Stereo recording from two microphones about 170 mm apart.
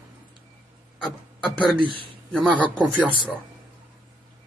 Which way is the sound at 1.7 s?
30° right (ahead or behind).